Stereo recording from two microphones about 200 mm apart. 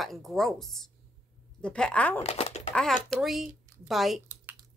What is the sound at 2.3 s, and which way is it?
Typing, 30° left (ahead or behind).